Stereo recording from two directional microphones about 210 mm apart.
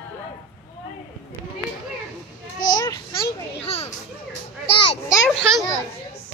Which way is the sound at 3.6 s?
30° left (ahead or behind).